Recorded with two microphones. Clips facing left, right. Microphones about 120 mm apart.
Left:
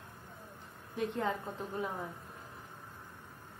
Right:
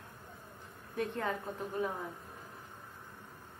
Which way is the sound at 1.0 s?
20° left (ahead or behind).